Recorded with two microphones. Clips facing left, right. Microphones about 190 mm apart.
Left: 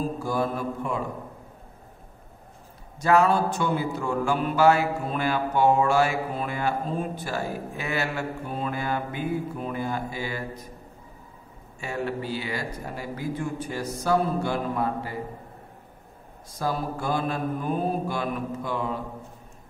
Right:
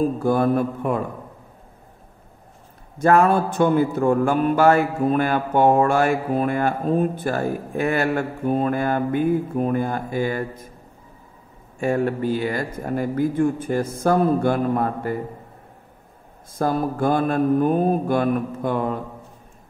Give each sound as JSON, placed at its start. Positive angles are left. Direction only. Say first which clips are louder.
{"t": 0.2, "sound": "mantra", "louder": "right 8 dB", "side_deg": -55}
{"t": 3.0, "sound": "speech", "louder": "right 4 dB", "side_deg": -50}
{"t": 11.8, "sound": "speech", "louder": "right 9 dB", "side_deg": -50}
{"t": 16.5, "sound": "speech", "louder": "right 7 dB", "side_deg": -50}